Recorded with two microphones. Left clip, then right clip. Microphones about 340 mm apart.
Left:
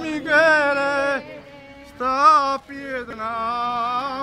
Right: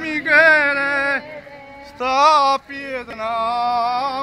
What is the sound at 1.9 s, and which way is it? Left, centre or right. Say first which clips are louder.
Music: right 1 dB; centre.